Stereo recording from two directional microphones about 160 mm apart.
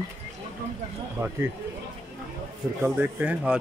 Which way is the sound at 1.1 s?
10° right (ahead or behind).